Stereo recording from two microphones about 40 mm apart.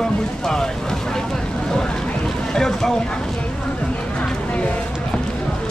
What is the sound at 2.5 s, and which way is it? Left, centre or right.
Speech, centre.